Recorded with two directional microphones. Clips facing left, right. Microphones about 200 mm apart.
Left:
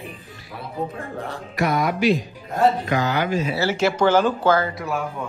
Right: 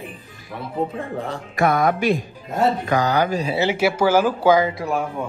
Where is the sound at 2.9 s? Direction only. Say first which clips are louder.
Right 2 dB; 40° right (ahead or behind).